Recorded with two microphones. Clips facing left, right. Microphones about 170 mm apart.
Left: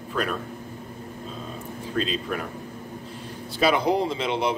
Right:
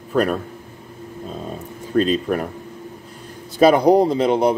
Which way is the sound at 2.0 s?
45° right (ahead or behind).